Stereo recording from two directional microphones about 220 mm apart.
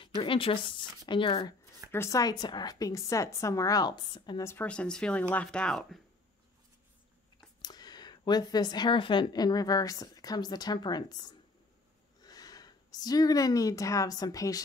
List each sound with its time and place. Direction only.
0.2 s a woman's voice: 25° left (ahead or behind); by 5.9 s centre (ahead or behind)
7.6 s speech: 20° left (ahead or behind)